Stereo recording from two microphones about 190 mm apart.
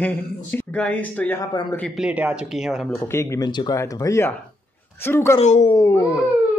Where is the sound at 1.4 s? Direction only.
20° left (ahead or behind).